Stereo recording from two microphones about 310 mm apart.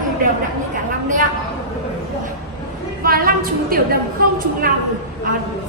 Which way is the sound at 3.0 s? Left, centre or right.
Right.